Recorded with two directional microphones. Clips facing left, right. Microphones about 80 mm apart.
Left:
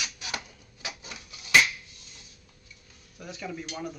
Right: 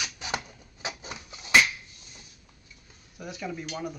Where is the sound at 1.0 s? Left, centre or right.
Right.